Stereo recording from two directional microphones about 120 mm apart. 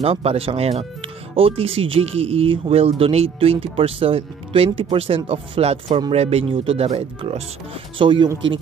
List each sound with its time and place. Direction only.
0.0 s speech: 55° right (ahead or behind)
8.0 s speech: 40° right (ahead or behind)